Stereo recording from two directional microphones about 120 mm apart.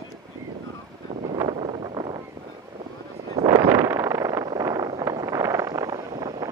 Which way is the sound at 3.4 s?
30° right (ahead or behind).